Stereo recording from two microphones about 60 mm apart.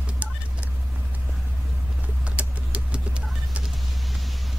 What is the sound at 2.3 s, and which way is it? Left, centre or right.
Vehicle, right.